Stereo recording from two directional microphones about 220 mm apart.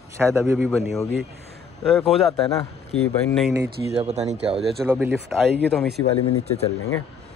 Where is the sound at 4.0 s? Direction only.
30° right (ahead or behind).